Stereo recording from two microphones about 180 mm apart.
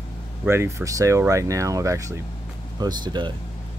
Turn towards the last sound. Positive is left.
turn(degrees=-25)  # may be behind; listen again after turning